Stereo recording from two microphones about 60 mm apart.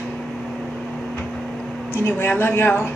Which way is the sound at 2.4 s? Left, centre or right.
Left.